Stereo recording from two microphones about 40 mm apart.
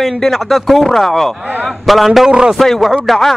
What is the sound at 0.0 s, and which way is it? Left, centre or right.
Speech, centre.